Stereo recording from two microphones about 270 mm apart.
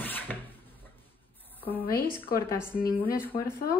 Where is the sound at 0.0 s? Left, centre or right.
Centre.